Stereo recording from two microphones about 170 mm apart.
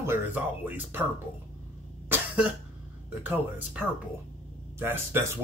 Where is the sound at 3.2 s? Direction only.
10° right (ahead or behind).